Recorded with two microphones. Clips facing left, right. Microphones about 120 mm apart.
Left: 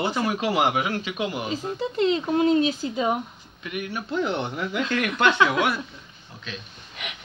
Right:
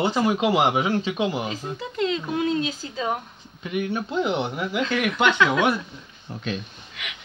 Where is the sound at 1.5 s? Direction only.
30° left (ahead or behind).